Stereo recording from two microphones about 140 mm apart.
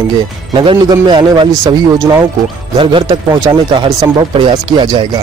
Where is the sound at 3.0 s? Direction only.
25° right (ahead or behind).